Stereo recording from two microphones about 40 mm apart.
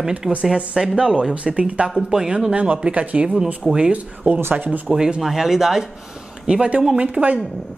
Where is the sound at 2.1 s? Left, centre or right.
Centre.